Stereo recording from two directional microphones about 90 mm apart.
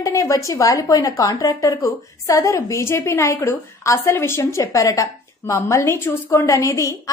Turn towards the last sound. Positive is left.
turn(degrees=35)  # may be behind; listen again after turning